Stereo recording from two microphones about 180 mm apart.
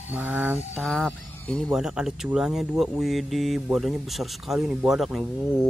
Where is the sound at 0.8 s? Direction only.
5° left (ahead or behind).